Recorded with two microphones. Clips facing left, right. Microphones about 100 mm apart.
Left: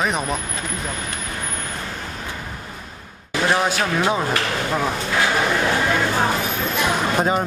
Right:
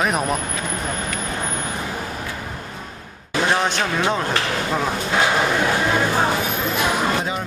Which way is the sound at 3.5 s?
5° left (ahead or behind).